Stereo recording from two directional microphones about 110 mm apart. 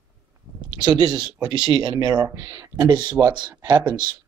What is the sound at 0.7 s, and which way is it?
Speech, 40° right (ahead or behind).